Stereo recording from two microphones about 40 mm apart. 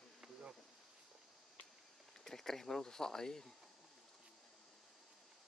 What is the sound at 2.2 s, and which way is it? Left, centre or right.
Speech, centre.